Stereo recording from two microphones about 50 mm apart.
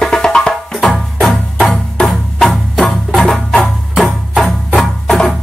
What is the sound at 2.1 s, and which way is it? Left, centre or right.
Music, centre.